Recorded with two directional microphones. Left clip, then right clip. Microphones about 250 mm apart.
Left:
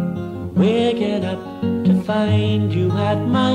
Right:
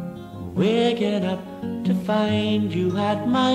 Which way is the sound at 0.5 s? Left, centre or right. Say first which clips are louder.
Left 3 dB; centre.